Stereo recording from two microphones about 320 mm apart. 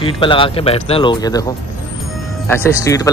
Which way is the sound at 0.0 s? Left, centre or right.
Centre.